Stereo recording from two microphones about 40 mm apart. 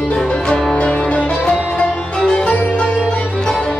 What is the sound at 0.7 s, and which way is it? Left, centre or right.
Music, left.